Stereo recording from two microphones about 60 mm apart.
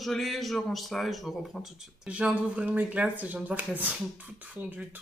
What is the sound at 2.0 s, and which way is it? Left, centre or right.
Speech, right.